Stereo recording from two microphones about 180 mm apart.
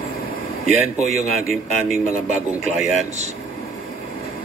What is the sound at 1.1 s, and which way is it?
Speech, 55° left (ahead or behind).